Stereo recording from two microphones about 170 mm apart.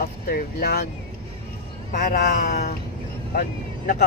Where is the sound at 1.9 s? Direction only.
55° left (ahead or behind).